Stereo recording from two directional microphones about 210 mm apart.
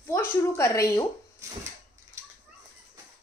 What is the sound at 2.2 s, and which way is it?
Bird flight, 15° right (ahead or behind).